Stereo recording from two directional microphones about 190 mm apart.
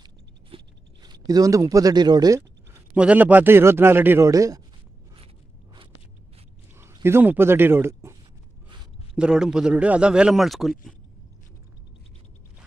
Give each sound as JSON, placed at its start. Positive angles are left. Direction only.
{"t": 0.5, "sound": "a sound", "side_deg": -30}
{"t": 1.0, "sound": "speech", "side_deg": -20}
{"t": 2.9, "sound": "a man's voice", "side_deg": -5}
{"t": 6.8, "sound": "speech", "side_deg": -15}